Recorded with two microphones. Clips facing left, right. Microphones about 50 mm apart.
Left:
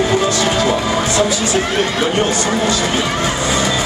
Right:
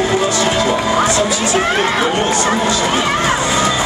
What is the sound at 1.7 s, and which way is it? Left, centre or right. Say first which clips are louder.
Speech: right 1 dB; centre.